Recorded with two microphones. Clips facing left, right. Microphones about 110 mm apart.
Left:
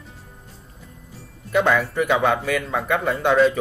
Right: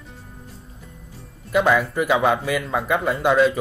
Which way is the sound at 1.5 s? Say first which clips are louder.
Right 1 dB; 5° right (ahead or behind).